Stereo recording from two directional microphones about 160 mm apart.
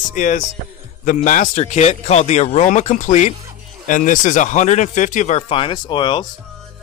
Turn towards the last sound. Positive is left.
turn(degrees=30)  # may be behind; listen again after turning